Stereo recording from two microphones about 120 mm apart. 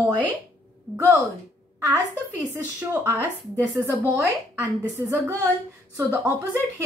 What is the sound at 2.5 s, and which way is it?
Speech, 20° right (ahead or behind).